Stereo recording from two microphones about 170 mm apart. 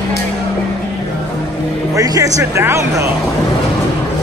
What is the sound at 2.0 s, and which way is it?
Speech, 20° right (ahead or behind).